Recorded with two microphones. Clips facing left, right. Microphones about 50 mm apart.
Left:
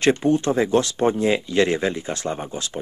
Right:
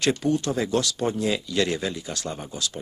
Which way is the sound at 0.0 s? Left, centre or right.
Left.